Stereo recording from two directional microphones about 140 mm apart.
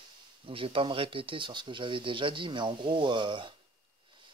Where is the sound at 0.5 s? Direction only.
40° right (ahead or behind).